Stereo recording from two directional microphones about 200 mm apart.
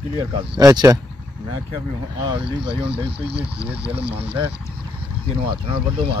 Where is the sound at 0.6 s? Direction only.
20° right (ahead or behind).